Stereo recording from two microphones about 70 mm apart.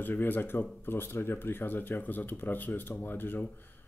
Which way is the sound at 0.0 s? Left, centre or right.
Left.